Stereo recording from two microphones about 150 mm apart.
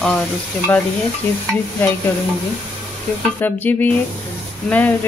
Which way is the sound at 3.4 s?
10° left (ahead or behind).